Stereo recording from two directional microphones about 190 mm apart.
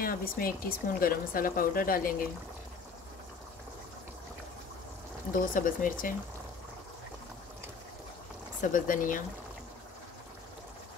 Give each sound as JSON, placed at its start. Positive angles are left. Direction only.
{"t": 0.0, "sound": "speech", "side_deg": 50}
{"t": 5.3, "sound": "speech", "side_deg": 45}
{"t": 8.5, "sound": "speech", "side_deg": 45}